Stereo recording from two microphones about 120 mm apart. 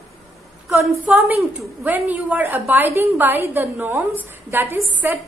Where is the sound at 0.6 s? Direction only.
15° right (ahead or behind).